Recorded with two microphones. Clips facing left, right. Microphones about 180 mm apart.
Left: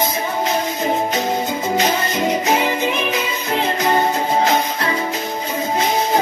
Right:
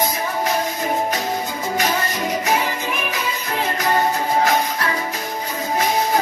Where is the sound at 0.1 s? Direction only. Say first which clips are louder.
Left 2 dB; 25° left (ahead or behind).